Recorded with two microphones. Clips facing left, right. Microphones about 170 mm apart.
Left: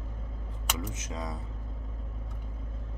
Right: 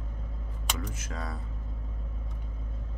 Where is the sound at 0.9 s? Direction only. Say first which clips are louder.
Left 1 dB; 20° left (ahead or behind).